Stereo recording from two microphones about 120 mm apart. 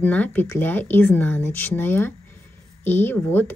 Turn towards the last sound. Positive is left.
turn(degrees=15)  # may be behind; listen again after turning